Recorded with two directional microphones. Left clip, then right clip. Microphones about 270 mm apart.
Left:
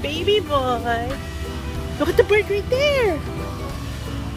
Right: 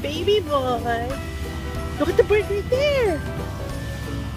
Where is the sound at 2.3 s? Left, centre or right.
Centre.